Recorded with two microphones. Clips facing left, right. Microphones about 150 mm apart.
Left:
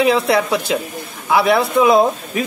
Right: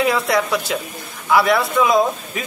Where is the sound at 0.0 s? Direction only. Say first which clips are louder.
Left 3 dB; 25° left (ahead or behind).